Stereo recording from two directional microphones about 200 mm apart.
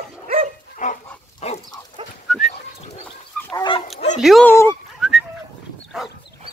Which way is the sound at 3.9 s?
35° left (ahead or behind).